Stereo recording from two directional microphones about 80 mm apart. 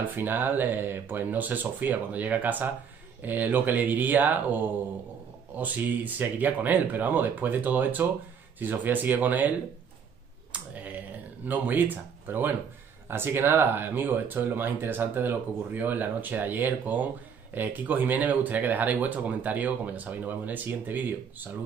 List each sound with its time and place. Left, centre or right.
0.1 s speech: right
10.5 s typing: centre
11.4 s speech: right